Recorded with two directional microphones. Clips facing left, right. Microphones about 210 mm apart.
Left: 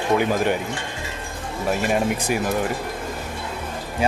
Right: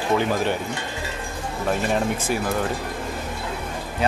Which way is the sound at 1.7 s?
10° left (ahead or behind).